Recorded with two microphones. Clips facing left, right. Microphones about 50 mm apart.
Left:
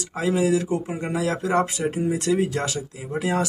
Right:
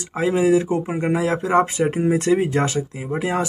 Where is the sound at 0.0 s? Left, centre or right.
Right.